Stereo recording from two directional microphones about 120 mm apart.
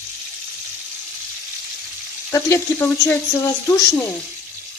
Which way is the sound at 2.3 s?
25° left (ahead or behind).